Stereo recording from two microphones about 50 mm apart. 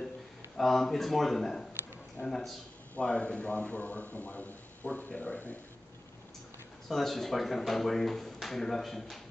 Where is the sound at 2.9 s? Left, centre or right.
Left.